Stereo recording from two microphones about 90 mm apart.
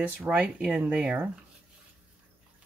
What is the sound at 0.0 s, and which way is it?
Speech, 15° right (ahead or behind).